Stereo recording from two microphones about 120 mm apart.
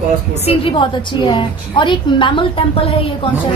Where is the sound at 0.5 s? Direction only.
45° left (ahead or behind).